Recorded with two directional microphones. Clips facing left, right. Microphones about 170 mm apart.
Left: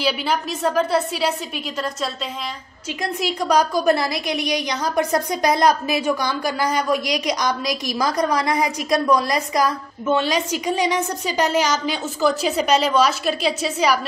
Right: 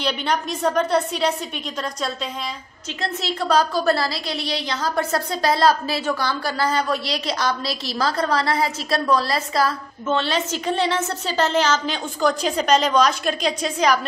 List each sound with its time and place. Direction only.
0.0 s a woman's voice: 5° left (ahead or behind)
3.0 s a woman's voice: 15° left (ahead or behind)